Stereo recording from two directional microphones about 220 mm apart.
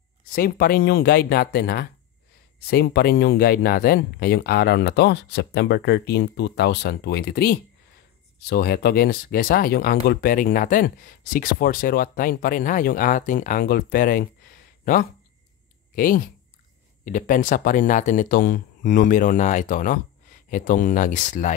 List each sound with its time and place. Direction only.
0.3 s speech: 40° left (ahead or behind)
15.9 s speech: 40° left (ahead or behind)